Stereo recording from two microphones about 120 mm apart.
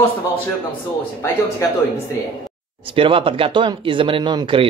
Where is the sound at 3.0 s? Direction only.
50° right (ahead or behind).